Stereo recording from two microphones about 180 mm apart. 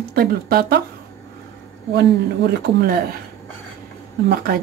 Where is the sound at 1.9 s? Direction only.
60° right (ahead or behind).